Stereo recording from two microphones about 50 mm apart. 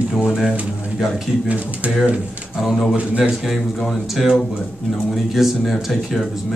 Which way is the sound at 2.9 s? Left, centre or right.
Right.